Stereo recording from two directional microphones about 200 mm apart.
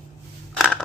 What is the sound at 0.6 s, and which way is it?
Scissors, 5° left (ahead or behind).